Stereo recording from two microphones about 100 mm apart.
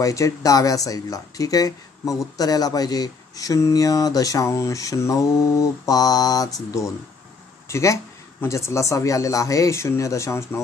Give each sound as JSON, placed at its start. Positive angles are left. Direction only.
{"t": 0.0, "sound": "speech", "side_deg": 35}
{"t": 7.6, "sound": "a man's voice", "side_deg": 30}